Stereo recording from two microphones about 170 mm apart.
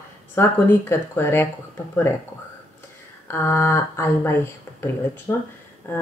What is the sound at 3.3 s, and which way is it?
Speech, 15° left (ahead or behind).